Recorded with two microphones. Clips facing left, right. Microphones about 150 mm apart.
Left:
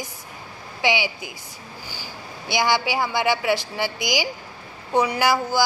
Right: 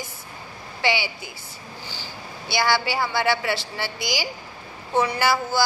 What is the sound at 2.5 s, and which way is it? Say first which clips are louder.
Speech: left 1 dB; 15° left (ahead or behind).